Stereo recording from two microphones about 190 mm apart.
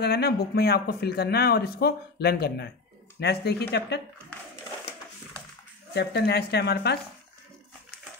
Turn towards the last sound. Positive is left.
turn(degrees=60)  # may be behind; listen again after turning